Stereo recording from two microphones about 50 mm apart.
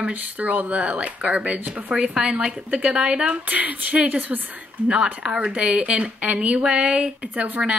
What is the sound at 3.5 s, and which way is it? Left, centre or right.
Speech, right.